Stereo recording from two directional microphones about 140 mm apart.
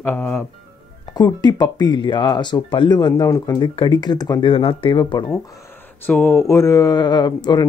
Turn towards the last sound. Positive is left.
turn(degrees=30)  # may be behind; listen again after turning